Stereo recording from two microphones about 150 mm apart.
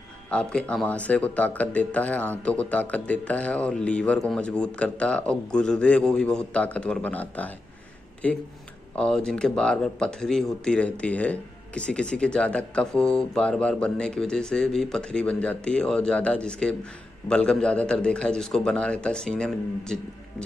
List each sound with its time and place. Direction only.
0.3 s speech: 5° left (ahead or behind)